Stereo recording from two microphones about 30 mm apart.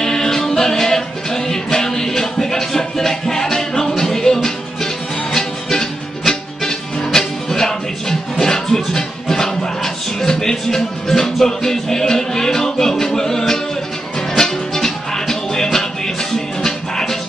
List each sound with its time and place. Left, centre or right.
0.0 s music: centre